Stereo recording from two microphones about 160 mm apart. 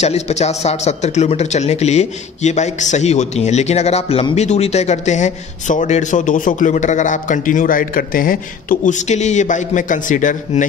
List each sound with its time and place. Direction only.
0.0 s a man's voice: 45° left (ahead or behind)